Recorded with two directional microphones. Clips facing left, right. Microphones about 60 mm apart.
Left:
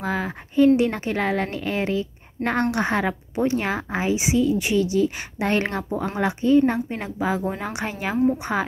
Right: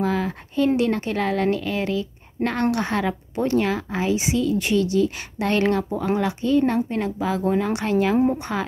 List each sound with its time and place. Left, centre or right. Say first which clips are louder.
0.0 s a woman's voice: right 3 dB; left